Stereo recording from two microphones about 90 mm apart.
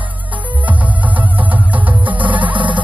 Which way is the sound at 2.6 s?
65° right (ahead or behind).